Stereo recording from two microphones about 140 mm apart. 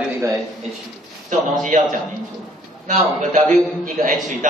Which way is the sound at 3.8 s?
65° right (ahead or behind).